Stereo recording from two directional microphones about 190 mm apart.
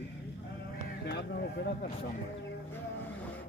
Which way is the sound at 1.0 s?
60° left (ahead or behind).